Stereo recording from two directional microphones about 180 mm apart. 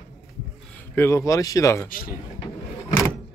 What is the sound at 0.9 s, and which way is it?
Speech, 15° left (ahead or behind).